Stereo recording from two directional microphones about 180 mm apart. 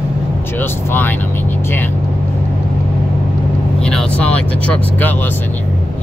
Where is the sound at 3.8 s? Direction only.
5° left (ahead or behind).